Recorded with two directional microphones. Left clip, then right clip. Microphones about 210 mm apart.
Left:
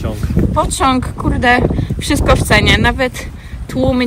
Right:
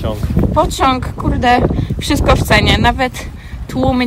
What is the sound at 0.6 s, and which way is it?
Speech, 15° right (ahead or behind).